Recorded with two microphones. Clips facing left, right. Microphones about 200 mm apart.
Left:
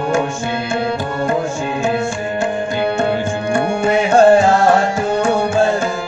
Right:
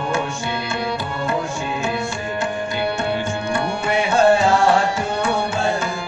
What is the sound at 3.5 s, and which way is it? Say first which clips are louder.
Tabla: left 7 dB; 50° left (ahead or behind).